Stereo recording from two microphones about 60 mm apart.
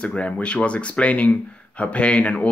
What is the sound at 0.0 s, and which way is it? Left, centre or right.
Speech, centre.